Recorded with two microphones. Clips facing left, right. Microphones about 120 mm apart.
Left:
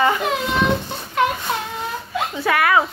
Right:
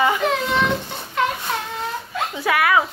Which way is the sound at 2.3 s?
5° right (ahead or behind).